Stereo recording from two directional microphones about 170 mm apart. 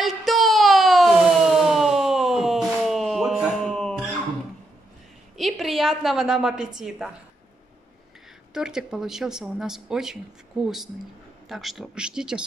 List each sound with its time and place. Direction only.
0.0 s a sound: centre (ahead or behind)
5.4 s a woman's voice: centre (ahead or behind)
8.5 s speech: 5° right (ahead or behind)